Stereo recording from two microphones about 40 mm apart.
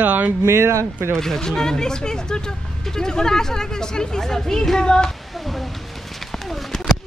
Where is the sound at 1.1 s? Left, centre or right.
Centre.